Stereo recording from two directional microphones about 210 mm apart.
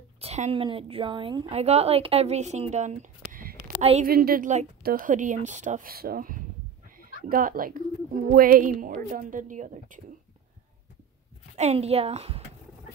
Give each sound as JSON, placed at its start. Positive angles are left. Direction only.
{"t": 0.2, "sound": "a woman's voice", "side_deg": -30}
{"t": 11.5, "sound": "a woman's voice", "side_deg": -30}